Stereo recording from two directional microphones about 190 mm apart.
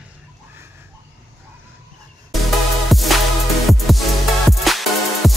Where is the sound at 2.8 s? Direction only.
Centre (ahead or behind).